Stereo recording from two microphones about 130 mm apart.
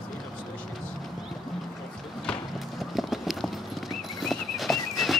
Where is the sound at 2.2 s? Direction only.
5° left (ahead or behind).